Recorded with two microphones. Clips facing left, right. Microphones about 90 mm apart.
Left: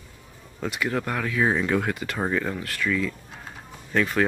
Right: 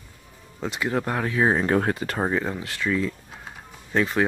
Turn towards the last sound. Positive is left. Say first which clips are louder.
# even
turn(degrees=-25)  # may be behind; listen again after turning